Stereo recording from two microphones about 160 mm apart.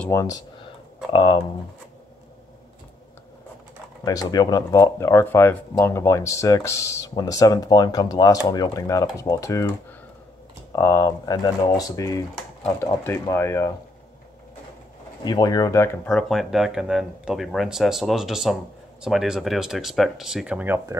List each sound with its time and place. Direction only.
0.1 s speech: 20° left (ahead or behind)
4.0 s speech: 25° left (ahead or behind)
10.7 s speech: 20° left (ahead or behind)
15.2 s speech: 25° left (ahead or behind)
16.1 s speech: centre (ahead or behind); by 21.0 s 15° right (ahead or behind)